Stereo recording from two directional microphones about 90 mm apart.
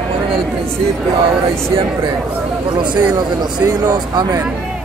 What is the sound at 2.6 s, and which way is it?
Speech, 60° right (ahead or behind).